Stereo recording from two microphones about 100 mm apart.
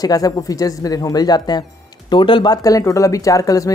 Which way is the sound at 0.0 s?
35° left (ahead or behind).